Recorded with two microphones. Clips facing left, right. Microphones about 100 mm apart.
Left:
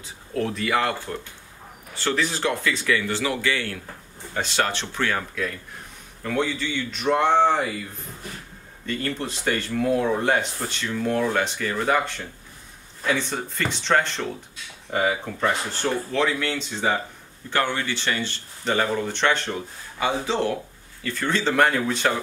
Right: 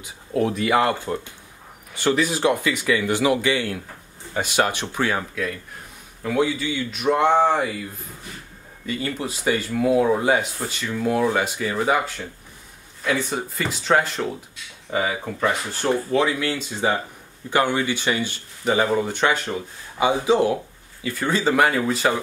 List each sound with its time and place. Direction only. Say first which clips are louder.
0.0 s speech: right 4 dB; 15° right (ahead or behind)
8.8 s speech: right 1 dB; 5° right (ahead or behind)